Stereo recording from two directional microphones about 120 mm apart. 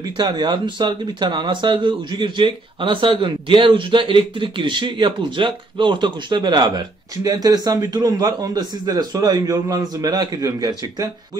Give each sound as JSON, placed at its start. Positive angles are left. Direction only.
{"t": 0.0, "sound": "speech", "side_deg": -40}